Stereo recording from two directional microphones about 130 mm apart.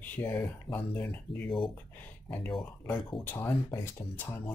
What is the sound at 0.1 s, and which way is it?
Speech, 15° left (ahead or behind).